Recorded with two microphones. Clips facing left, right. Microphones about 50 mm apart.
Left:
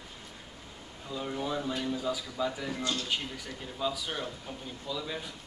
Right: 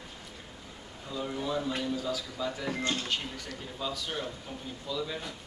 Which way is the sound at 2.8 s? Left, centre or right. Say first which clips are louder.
Right 1 dB; right.